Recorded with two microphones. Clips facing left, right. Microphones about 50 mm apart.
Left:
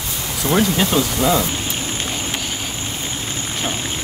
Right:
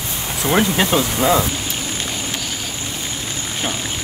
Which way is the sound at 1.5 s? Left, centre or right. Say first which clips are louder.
Left 1 dB; left.